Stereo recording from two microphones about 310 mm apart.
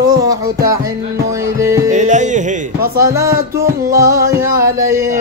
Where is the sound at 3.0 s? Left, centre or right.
Centre.